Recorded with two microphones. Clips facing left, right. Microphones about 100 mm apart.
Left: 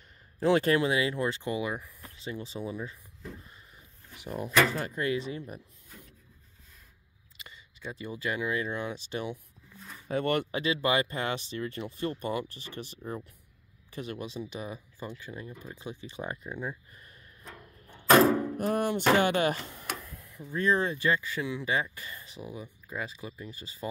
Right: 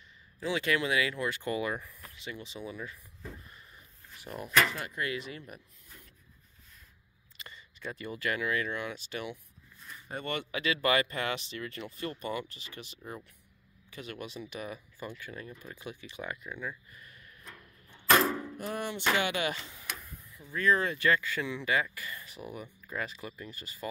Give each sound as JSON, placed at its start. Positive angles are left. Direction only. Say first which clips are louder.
{"t": 0.4, "sound": "speech", "louder": "left 6 dB", "side_deg": 45}
{"t": 1.4, "sound": "speech", "louder": "left 1 dB", "side_deg": 20}
{"t": 2.0, "sound": "speech", "louder": "left 4 dB", "side_deg": 30}
{"t": 4.1, "sound": "speech", "louder": "left 5 dB", "side_deg": 20}
{"t": 4.6, "sound": "speech", "louder": "left 5 dB", "side_deg": 35}
{"t": 7.3, "sound": "speech", "louder": "right 1 dB", "side_deg": 10}
{"t": 10.0, "sound": "speech", "louder": "left 8 dB", "side_deg": 65}
{"t": 10.5, "sound": "speech", "louder": "left 1 dB", "side_deg": 30}
{"t": 20.5, "sound": "speech", "louder": "left 1 dB", "side_deg": 25}
{"t": 22.4, "sound": "speech", "louder": "left 3 dB", "side_deg": 10}